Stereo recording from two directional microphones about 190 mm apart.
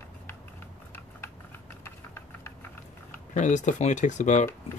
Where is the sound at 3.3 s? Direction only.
40° left (ahead or behind).